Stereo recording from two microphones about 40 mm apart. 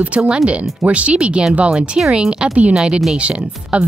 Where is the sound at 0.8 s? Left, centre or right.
Right.